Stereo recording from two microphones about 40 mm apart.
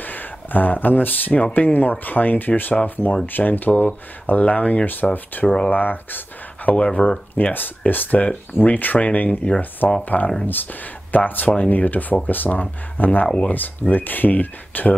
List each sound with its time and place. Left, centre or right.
0.0 s speech: left
5.1 s speech: left
7.9 s speech: left
10.4 s speech: left